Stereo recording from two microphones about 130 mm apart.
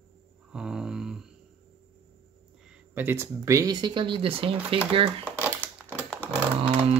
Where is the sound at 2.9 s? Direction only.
15° right (ahead or behind); by 4.7 s 45° right (ahead or behind).